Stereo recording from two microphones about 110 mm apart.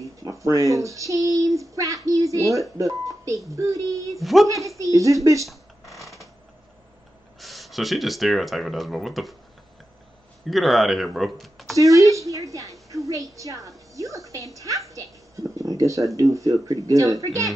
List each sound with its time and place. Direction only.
0.0 s a sound: 30° right (ahead or behind)
2.8 s a woman's voice: 30° right (ahead or behind)
4.2 s speech: centre (ahead or behind)
4.7 s a woman's voice: 30° right (ahead or behind)
5.5 s a sound: centre (ahead or behind)
7.3 s speech: centre (ahead or behind)
10.4 s speech: centre (ahead or behind)
11.7 s a woman's voice: 30° right (ahead or behind)
14.9 s a sound: 30° right (ahead or behind)
16.2 s a woman's voice: 30° right (ahead or behind)